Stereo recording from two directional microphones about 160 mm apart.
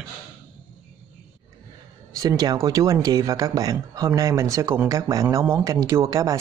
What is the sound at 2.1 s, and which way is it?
Speech, 25° right (ahead or behind).